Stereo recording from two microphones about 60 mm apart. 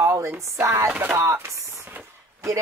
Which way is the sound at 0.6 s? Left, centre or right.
Right.